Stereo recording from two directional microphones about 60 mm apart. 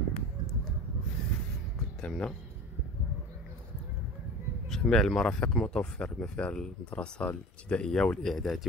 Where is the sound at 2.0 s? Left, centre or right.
Centre.